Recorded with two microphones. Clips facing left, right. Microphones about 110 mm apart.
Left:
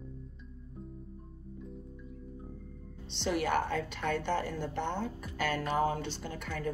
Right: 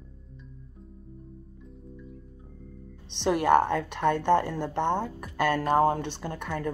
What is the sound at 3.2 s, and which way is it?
Speech, 65° right (ahead or behind).